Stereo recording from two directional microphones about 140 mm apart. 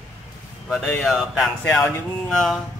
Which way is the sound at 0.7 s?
5° left (ahead or behind).